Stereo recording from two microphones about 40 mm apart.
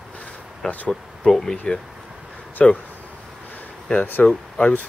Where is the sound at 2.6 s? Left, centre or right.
Centre.